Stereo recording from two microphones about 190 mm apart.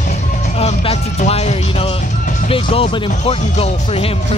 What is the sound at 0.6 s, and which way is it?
Music, 30° left (ahead or behind).